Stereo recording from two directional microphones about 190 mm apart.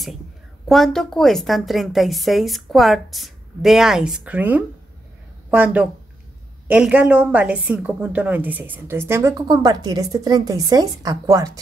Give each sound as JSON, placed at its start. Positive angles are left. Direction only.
{"t": 0.7, "sound": "a woman's voice", "side_deg": 0}